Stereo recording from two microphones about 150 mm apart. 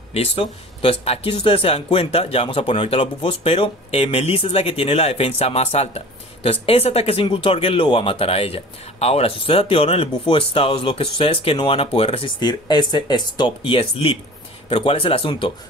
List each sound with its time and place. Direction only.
0.1 s speech: 40° left (ahead or behind)